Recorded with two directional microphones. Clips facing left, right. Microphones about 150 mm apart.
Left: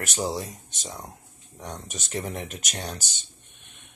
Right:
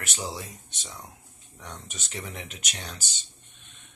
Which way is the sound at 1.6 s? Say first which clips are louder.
Left 5 dB; 45° left (ahead or behind).